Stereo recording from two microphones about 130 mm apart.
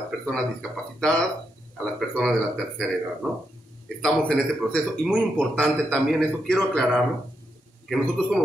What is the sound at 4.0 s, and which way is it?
Speech, 5° left (ahead or behind).